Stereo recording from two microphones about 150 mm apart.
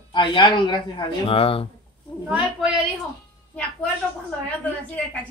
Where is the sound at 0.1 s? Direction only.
30° left (ahead or behind).